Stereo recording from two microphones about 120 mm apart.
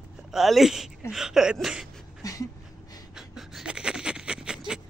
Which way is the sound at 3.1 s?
5° right (ahead or behind).